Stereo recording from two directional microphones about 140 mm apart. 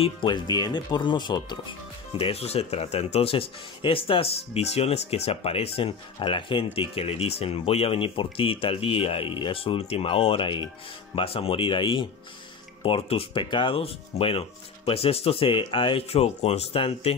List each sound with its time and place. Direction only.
0.0 s speech: 35° left (ahead or behind)